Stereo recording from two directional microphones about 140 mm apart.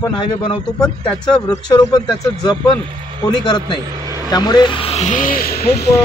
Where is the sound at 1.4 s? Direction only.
30° left (ahead or behind); by 5.5 s 90° left.